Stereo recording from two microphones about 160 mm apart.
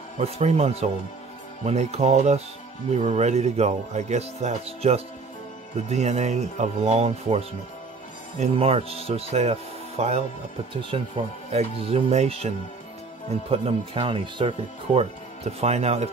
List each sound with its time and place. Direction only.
0.2 s speech: 40° right (ahead or behind)